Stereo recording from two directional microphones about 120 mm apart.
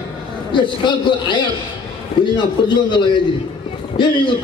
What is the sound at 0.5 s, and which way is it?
A man's voice, 40° left (ahead or behind).